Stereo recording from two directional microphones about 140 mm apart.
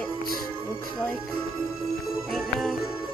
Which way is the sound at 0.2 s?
90° left.